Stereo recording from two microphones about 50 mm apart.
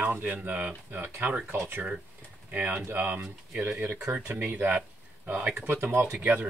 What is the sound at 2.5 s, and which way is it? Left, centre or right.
Speech, right.